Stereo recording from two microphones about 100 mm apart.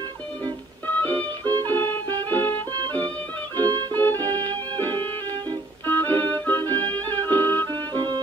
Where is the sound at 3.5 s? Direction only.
40° right (ahead or behind).